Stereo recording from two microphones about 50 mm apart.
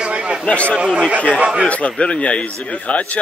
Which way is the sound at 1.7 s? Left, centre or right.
Left.